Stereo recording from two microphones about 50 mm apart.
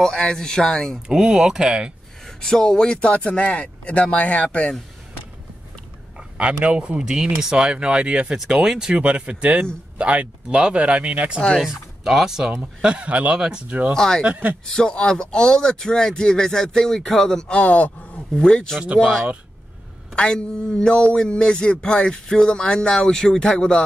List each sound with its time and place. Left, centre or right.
0.0 s a man's voice: centre
1.0 s speech: centre
2.4 s speech: centre
6.3 s speech: right
11.6 s speech: centre
12.8 s speech: right
13.9 s a man's voice: centre
14.2 s speech: right
14.7 s a man's voice: centre
17.5 s speech: left
18.3 s a man's voice: centre